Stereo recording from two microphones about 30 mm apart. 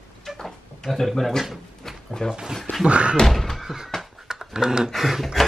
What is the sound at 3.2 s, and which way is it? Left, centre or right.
Speech, centre.